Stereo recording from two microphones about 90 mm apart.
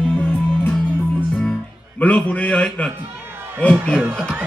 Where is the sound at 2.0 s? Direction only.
15° left (ahead or behind).